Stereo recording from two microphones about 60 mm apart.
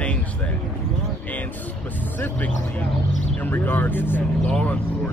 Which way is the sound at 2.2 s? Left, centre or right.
Left.